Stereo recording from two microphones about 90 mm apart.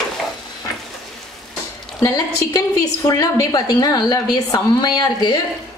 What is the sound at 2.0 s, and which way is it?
A woman's voice, 40° left (ahead or behind).